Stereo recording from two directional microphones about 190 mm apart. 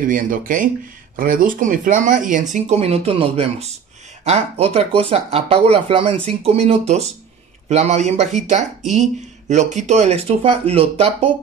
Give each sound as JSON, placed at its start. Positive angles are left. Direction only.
{"t": 0.0, "sound": "speech", "side_deg": -45}